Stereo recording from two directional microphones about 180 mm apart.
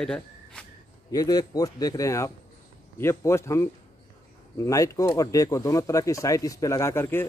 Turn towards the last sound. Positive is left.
turn(degrees=15)  # may be behind; listen again after turning